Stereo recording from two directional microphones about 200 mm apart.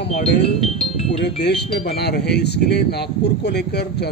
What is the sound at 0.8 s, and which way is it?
Music, 30° left (ahead or behind).